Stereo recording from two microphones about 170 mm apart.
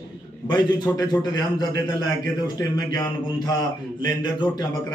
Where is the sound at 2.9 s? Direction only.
25° left (ahead or behind).